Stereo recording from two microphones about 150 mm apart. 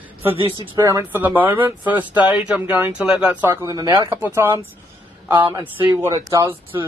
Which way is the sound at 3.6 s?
25° right (ahead or behind).